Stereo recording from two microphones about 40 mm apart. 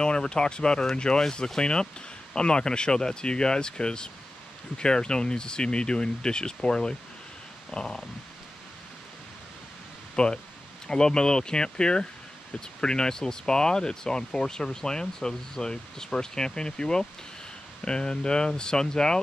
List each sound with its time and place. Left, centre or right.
0.0 s speech: left
10.1 s speech: left